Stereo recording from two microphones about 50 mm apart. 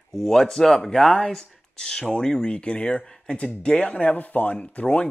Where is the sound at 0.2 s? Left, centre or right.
Centre.